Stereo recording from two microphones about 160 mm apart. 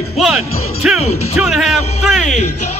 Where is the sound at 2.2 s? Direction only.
50° left (ahead or behind).